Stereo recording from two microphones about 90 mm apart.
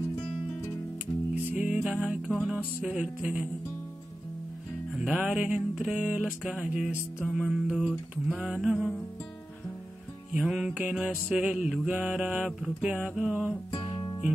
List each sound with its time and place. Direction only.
1.6 s mantra: 10° right (ahead or behind)
4.9 s mantra: 10° right (ahead or behind)
7.2 s music: 10° left (ahead or behind)
7.5 s mantra: 5° right (ahead or behind)
10.3 s music: 5° right (ahead or behind)
10.8 s mantra: 10° right (ahead or behind)
13.7 s music: 70° left (ahead or behind)